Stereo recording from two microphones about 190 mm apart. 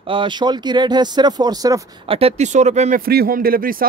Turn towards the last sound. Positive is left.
turn(degrees=-50)  # may be behind; listen again after turning